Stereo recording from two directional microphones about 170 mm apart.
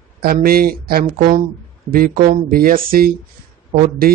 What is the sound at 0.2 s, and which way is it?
Speech, 60° right (ahead or behind).